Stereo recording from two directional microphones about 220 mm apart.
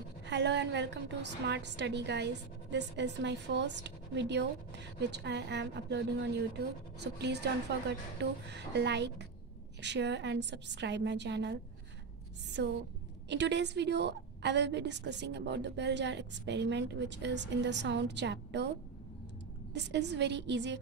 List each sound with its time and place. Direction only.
0.3 s a woman's voice: 55° right (ahead or behind)
19.7 s a woman's voice: 50° right (ahead or behind)